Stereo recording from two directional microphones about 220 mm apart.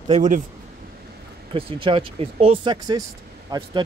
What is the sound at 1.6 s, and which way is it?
Speech, 25° right (ahead or behind).